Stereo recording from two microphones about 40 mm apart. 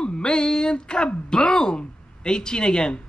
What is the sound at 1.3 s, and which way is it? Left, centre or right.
Speech, left.